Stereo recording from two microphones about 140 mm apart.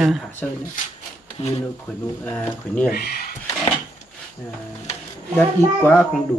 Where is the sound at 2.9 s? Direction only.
90° left.